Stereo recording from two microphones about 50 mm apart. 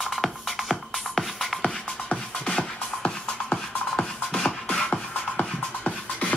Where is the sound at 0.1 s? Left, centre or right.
Centre.